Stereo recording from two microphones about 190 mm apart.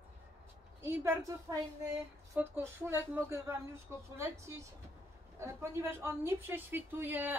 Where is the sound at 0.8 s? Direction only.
15° right (ahead or behind).